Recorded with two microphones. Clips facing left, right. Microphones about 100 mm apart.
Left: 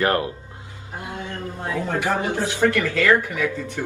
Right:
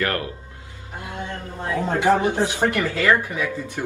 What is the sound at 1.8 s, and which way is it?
Speech, 20° right (ahead or behind).